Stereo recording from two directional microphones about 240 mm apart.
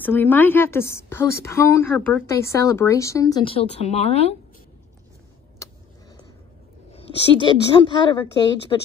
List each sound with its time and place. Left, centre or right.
0.0 s a woman's voice: centre; by 4.4 s left
5.6 s vehicle: centre
6.9 s a woman's voice: left